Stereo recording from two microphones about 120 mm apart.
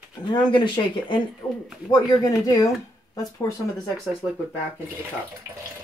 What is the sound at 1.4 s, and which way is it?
Speech, 15° left (ahead or behind).